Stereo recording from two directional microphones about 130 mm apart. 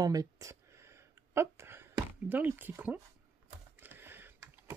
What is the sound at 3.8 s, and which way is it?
Computer keyboard, 15° right (ahead or behind).